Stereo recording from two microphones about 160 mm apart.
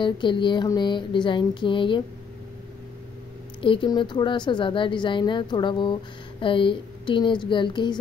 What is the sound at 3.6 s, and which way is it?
A woman's voice, 30° left (ahead or behind).